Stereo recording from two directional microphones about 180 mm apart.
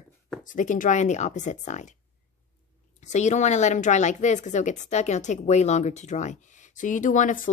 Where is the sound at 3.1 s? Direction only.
40° left (ahead or behind).